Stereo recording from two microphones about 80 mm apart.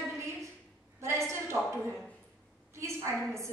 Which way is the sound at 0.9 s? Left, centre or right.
Right.